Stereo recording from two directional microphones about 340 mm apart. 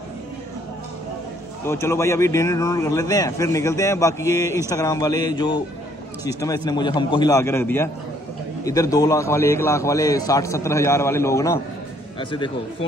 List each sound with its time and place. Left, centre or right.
1.7 s a man's voice: centre